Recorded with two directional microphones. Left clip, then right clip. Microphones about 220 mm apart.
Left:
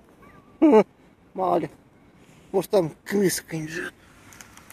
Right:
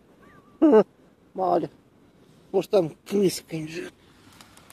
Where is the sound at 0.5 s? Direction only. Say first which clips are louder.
Left 1 dB; 5° left (ahead or behind).